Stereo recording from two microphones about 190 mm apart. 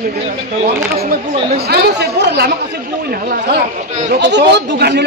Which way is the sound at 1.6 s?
60° right (ahead or behind).